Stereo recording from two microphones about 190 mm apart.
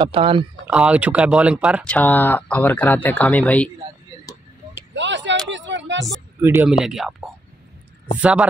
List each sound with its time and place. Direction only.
0.0 s speech: 25° right (ahead or behind)
0.7 s speech: 5° right (ahead or behind)
4.9 s a sound: 70° right (ahead or behind)
6.4 s speech: 15° right (ahead or behind)
6.8 s speech: centre (ahead or behind)